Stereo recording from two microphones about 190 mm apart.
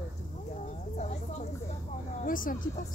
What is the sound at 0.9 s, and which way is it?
Speech, 40° left (ahead or behind).